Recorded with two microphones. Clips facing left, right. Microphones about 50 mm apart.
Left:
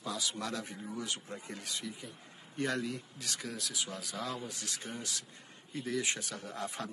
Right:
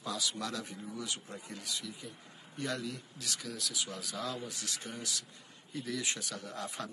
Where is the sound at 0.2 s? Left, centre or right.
Left.